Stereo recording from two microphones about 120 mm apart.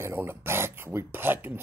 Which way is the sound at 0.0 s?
20° right (ahead or behind).